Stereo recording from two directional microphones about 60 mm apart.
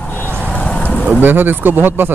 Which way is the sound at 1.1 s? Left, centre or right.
Right.